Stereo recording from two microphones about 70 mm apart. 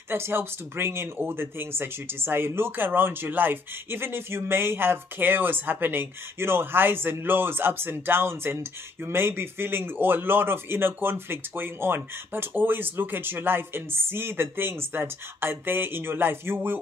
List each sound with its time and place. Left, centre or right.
0.1 s speech: right